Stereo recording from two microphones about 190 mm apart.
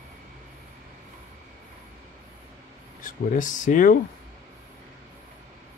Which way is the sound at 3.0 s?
45° left (ahead or behind).